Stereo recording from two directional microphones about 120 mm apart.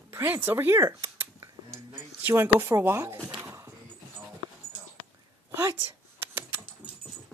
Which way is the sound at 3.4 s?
25° right (ahead or behind).